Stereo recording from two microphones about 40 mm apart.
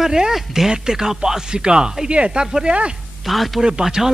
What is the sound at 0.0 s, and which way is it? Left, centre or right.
Speech, centre.